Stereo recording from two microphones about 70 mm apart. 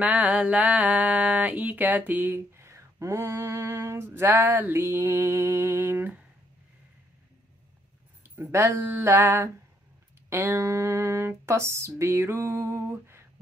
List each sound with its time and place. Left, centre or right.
0.0 s speech: right
8.2 s speech: right
8.9 s speech: right